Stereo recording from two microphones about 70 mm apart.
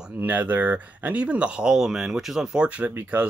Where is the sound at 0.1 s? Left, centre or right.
Right.